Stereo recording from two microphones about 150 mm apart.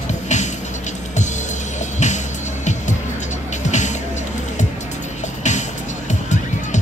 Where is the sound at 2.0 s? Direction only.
50° left (ahead or behind).